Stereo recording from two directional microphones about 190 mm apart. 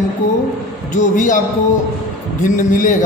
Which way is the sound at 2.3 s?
45° left (ahead or behind).